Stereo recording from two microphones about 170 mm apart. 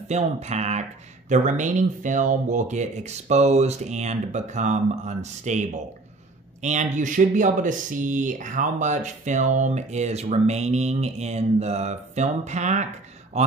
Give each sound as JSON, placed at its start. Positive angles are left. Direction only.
{"t": 0.1, "sound": "speech", "side_deg": -40}